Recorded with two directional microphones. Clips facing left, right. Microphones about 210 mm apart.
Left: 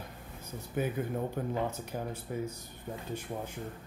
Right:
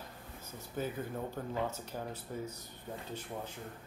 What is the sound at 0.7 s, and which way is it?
Speech, 15° left (ahead or behind).